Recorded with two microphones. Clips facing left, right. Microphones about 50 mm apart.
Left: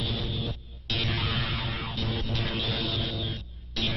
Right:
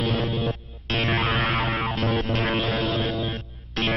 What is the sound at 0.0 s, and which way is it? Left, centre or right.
Music, right.